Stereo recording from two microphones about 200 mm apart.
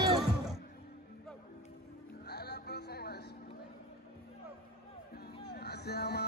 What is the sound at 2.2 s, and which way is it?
Music, 55° left (ahead or behind).